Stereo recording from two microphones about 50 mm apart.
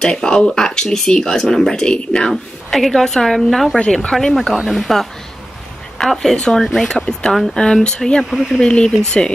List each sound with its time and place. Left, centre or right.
0.0 s speech: centre
2.7 s a woman's voice: centre
8.2 s a woman's voice: centre
8.5 s speech: centre